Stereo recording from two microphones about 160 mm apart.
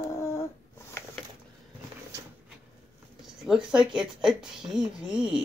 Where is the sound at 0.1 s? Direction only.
20° left (ahead or behind).